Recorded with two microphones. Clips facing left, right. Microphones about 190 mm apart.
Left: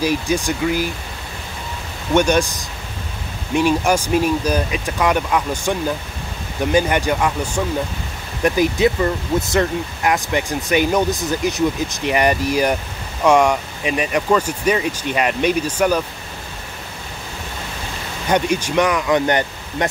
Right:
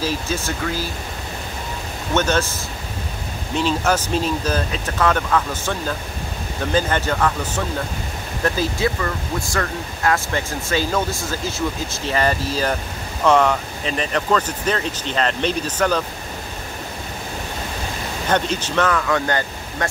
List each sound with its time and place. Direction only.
0.0 s speech: 15° left (ahead or behind)
2.1 s speech: 15° left (ahead or behind)
18.3 s speech: 10° left (ahead or behind)